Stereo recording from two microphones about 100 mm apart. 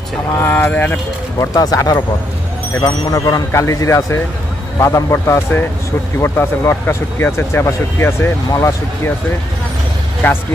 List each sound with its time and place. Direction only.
0.4 s speech: 20° left (ahead or behind)
1.4 s speech: 40° left (ahead or behind)